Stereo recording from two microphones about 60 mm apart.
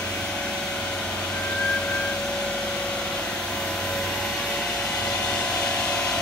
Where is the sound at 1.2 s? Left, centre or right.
Centre.